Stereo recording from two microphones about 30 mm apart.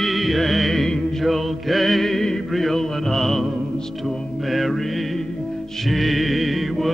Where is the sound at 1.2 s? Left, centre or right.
Centre.